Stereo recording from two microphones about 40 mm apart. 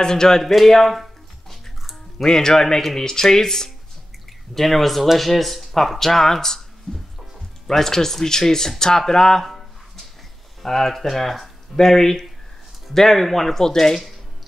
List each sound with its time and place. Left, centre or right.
0.0 s speech: centre
0.4 s a sound: centre
1.8 s music: centre
2.2 s speech: centre
4.6 s speech: centre